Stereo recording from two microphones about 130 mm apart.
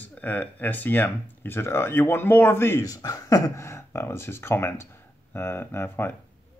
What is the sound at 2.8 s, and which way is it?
Speech, 25° left (ahead or behind).